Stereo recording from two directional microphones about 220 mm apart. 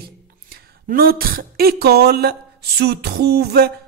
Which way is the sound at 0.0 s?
45° right (ahead or behind).